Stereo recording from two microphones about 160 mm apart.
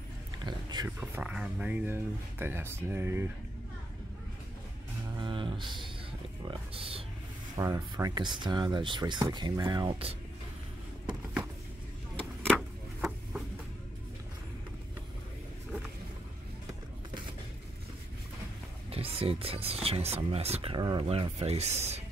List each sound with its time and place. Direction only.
0.4 s speech: 25° right (ahead or behind)
0.8 s speech: 10° right (ahead or behind)
5.1 s a sound: 30° right (ahead or behind)
6.4 s speech: 35° right (ahead or behind)
7.5 s speech: 25° right (ahead or behind)
18.9 s speech: 35° right (ahead or behind)